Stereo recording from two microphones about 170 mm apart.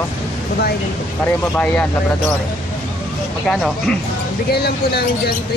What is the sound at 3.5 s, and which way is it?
Speech, centre (ahead or behind).